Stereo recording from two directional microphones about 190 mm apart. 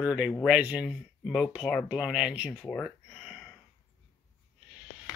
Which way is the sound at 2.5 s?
5° left (ahead or behind).